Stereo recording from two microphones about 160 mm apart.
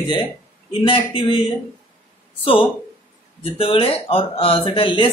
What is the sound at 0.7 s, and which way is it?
Speech, 35° left (ahead or behind).